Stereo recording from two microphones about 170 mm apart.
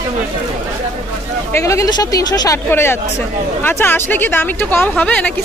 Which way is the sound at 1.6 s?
20° left (ahead or behind).